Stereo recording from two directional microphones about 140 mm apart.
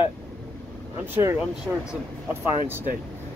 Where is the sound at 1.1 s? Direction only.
15° right (ahead or behind).